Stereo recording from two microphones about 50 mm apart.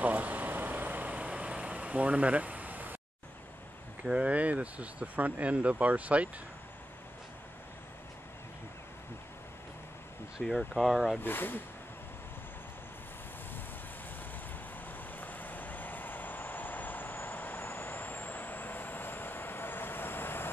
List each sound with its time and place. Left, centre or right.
0.0 s vehicle: right
1.5 s vehicle: right
4.0 s speech: right
10.7 s speech: centre
11.2 s speech: left
14.9 s vehicle: left